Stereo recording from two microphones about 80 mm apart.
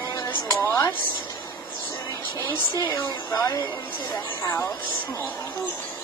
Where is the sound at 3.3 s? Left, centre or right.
Left.